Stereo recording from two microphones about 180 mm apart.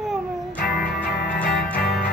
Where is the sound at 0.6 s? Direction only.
50° left (ahead or behind).